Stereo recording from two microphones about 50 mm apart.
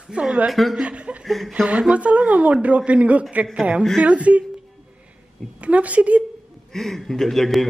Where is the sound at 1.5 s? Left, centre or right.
Right.